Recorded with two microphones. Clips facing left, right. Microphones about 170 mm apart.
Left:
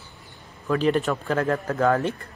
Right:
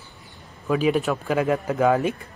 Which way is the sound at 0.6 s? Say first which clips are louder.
Right 1 dB; 10° right (ahead or behind).